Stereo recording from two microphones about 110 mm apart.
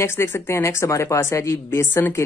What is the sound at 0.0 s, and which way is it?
A woman's voice, 25° left (ahead or behind).